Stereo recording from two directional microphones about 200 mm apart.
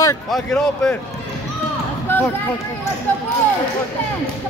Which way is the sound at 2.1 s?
10° left (ahead or behind).